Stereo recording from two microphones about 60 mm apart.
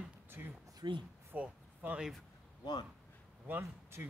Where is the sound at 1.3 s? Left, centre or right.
Right.